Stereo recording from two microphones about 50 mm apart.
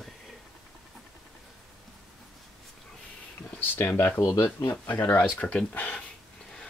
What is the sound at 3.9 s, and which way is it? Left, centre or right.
Speech, left.